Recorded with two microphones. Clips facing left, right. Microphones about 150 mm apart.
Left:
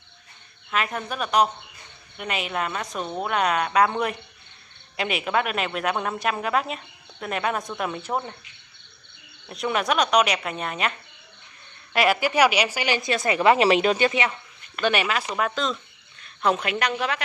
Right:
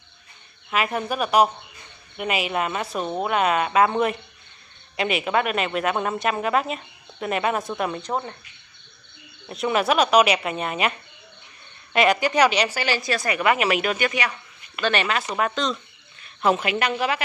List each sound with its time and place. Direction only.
0.7 s a woman's voice: 10° right (ahead or behind)
9.5 s a woman's voice: centre (ahead or behind)
11.9 s a woman's voice: 5° left (ahead or behind); by 14.3 s 25° left (ahead or behind)
14.8 s speech: 10° left (ahead or behind)